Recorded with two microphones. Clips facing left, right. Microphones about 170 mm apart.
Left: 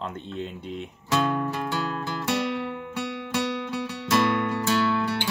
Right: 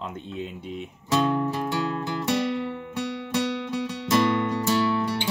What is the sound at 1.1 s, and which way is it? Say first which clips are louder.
Music: right 2 dB; 20° right (ahead or behind).